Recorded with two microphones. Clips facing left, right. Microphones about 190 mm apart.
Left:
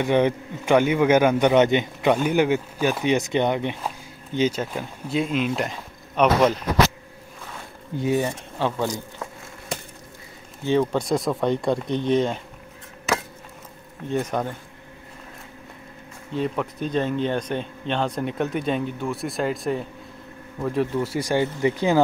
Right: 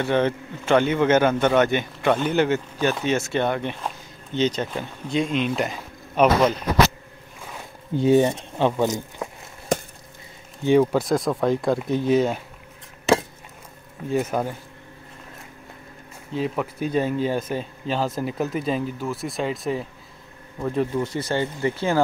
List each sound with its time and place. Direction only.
0.0 s a man's voice: 15° left (ahead or behind); by 6.5 s 5° right (ahead or behind)
8.0 s speech: 25° right (ahead or behind)
10.6 s speech: 10° right (ahead or behind)
13.1 s vehicle: 30° right (ahead or behind)
14.0 s speech: 5° right (ahead or behind)
16.3 s a man's voice: centre (ahead or behind); by 22.0 s 15° left (ahead or behind)